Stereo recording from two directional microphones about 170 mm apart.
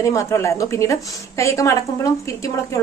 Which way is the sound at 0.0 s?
20° left (ahead or behind).